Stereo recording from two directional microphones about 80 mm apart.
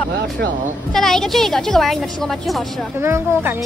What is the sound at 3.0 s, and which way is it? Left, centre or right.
Speech, right.